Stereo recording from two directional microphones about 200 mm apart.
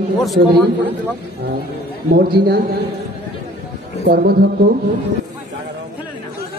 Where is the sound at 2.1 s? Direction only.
55° right (ahead or behind).